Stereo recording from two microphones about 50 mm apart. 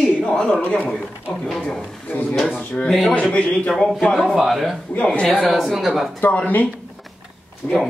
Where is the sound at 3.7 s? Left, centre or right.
Centre.